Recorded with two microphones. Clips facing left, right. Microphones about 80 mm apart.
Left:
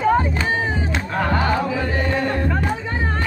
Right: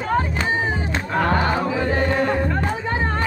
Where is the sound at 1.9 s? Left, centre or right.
Right.